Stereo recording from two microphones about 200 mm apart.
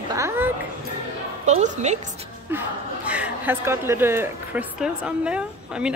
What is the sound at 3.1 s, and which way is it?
A woman's voice, 5° right (ahead or behind).